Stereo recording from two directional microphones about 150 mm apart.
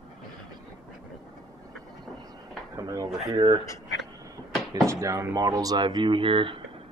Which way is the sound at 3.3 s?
30° right (ahead or behind).